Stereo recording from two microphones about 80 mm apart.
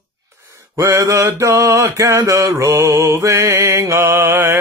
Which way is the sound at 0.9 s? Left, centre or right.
Right.